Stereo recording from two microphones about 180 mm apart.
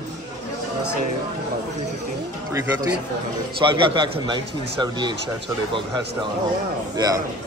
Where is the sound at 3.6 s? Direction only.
25° right (ahead or behind).